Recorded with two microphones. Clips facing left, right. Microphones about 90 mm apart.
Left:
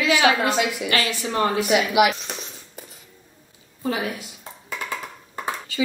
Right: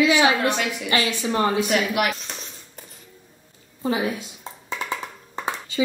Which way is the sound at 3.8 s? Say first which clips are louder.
Right 2 dB; 25° right (ahead or behind).